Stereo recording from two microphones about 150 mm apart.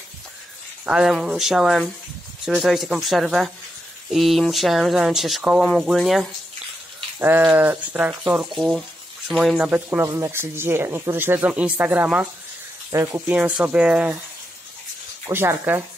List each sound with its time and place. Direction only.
0.8 s speech: 5° right (ahead or behind)
7.2 s speech: 15° right (ahead or behind)
8.5 s speech: centre (ahead or behind)
9.7 s speech: 15° right (ahead or behind)
15.2 s speech: 15° right (ahead or behind)